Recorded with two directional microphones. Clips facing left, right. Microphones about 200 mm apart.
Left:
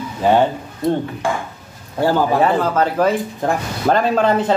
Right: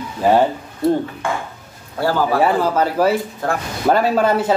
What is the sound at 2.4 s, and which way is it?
A man's voice, 10° right (ahead or behind).